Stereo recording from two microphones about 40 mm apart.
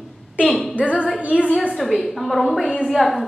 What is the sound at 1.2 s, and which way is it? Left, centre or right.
Speech, right.